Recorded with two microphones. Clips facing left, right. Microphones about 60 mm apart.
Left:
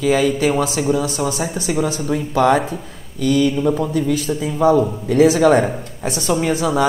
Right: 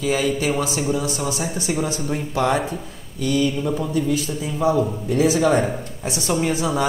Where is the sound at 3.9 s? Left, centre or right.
Left.